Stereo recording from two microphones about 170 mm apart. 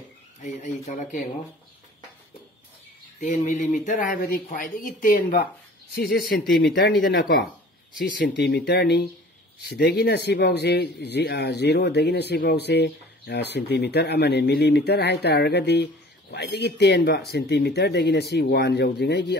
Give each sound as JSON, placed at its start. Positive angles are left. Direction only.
{"t": 0.4, "sound": "speech", "side_deg": 45}
{"t": 3.2, "sound": "speech", "side_deg": 45}
{"t": 5.9, "sound": "speech", "side_deg": 75}
{"t": 8.0, "sound": "speech", "side_deg": 75}